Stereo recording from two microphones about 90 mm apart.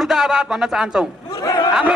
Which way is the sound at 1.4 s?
45° left (ahead or behind).